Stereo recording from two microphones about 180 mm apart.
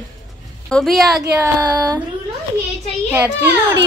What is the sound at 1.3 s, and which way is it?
Child singing, 20° right (ahead or behind).